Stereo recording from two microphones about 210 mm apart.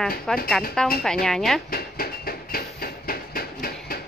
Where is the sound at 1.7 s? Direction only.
45° left (ahead or behind).